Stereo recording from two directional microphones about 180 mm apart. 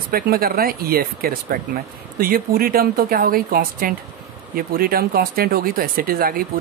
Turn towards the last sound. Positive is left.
turn(degrees=-55)  # may be behind; listen again after turning